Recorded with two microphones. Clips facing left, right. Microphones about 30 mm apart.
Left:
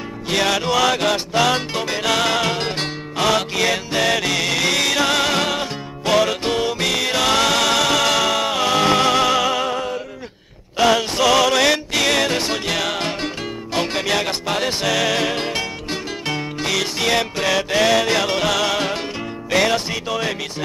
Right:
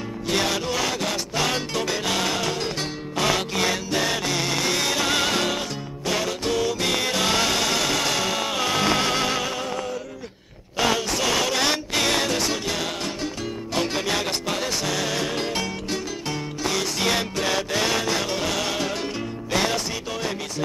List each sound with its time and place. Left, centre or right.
0.3 s music: left
0.7 s music: left
1.7 s music: left
2.0 s music: left
4.0 s music: left
6.0 s music: left
8.5 s music: left
9.1 s music: left
10.8 s a sound: left
12.3 s music: left
13.7 s music: left
15.3 s music: left
16.3 s music: left